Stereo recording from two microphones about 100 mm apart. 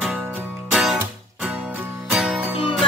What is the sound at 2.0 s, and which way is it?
Music, centre (ahead or behind).